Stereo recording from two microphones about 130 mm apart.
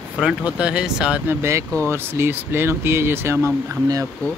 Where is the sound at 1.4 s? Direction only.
20° right (ahead or behind).